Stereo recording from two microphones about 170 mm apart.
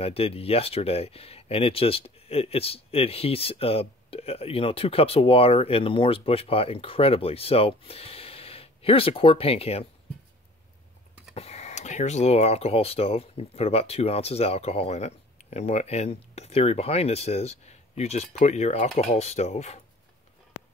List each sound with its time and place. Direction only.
0.0 s speech: 35° left (ahead or behind)
11.3 s speech: 40° left (ahead or behind)